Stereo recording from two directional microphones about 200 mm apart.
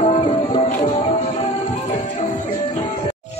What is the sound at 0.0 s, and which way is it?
Music, 30° left (ahead or behind).